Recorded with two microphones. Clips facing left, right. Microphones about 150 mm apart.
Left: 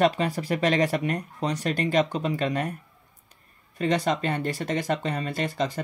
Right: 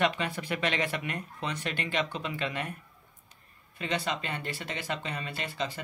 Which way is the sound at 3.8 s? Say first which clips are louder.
Left 8 dB; 40° left (ahead or behind).